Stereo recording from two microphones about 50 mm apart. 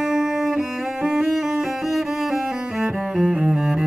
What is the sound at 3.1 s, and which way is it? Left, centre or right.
Cello, centre.